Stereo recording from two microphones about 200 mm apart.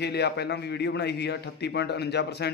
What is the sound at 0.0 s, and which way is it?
A man's voice, 55° left (ahead or behind).